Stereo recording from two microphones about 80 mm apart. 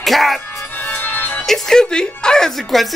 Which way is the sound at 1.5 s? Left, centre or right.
Centre.